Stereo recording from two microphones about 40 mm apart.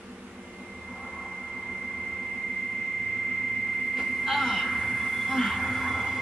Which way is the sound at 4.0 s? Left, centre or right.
Centre.